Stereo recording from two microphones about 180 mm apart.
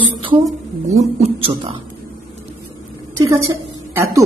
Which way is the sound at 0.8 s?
40° right (ahead or behind).